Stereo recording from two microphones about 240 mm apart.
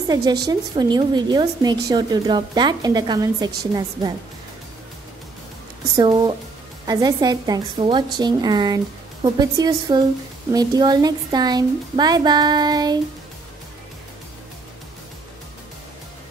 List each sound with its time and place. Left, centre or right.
0.1 s a woman's voice: centre
5.9 s a woman's voice: centre